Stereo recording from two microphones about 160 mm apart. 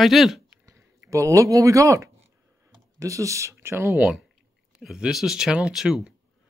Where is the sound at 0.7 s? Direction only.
20° right (ahead or behind).